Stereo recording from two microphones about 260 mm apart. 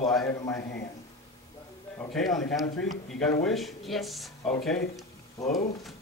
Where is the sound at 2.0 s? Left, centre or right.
Centre.